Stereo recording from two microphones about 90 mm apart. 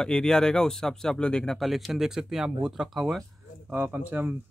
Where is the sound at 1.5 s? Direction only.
Centre (ahead or behind).